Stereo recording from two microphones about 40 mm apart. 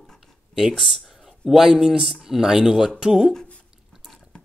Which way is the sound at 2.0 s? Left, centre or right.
Centre.